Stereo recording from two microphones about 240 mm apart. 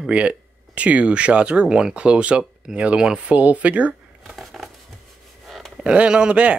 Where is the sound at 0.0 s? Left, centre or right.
Centre.